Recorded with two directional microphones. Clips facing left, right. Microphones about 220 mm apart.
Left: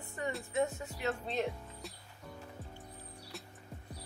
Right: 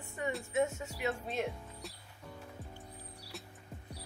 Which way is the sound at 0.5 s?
20° right (ahead or behind).